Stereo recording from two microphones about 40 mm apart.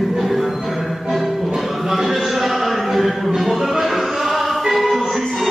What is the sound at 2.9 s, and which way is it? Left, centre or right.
Music, centre.